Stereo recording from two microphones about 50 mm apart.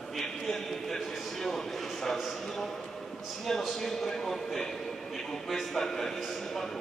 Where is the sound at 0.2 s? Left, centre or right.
Centre.